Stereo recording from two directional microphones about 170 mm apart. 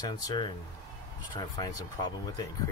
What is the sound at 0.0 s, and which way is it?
Speech, 25° left (ahead or behind).